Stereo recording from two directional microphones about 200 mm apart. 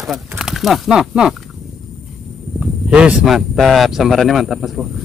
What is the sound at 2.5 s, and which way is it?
Speech, 5° right (ahead or behind).